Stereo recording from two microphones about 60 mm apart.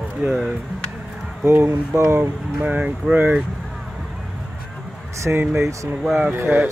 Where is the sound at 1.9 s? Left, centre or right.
Right.